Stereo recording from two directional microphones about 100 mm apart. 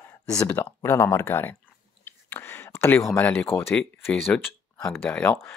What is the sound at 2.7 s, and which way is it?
Speech, 10° left (ahead or behind).